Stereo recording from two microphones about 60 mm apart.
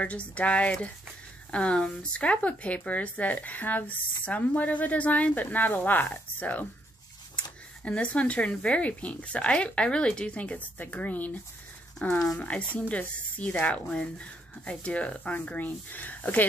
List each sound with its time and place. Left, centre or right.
0.0 s speech: left
7.8 s speech: left